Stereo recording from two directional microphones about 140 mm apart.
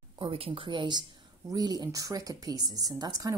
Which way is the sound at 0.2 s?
40° right (ahead or behind).